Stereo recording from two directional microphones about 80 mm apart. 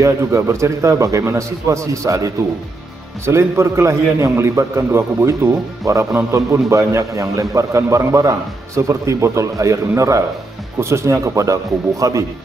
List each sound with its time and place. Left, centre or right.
0.0 s a man's voice: right